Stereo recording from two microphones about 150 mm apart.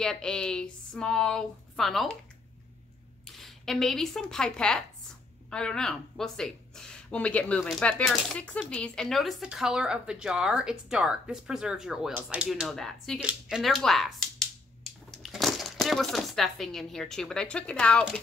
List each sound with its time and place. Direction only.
0.0 s speech: 5° left (ahead or behind)
3.3 s speech: centre (ahead or behind)